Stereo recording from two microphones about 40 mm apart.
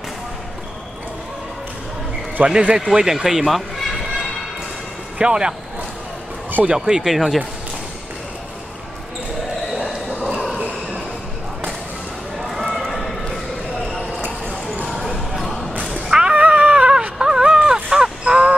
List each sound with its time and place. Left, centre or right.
2.4 s speech: right
2.9 s speech: centre
5.2 s speech: right
6.6 s speech: right
6.9 s speech: centre
12.4 s a sound: centre
14.9 s basketball bounce: centre
15.1 s basketball bounce: centre
15.9 s cat: centre
16.3 s dog: right
17.2 s wail: centre
17.8 s crow: centre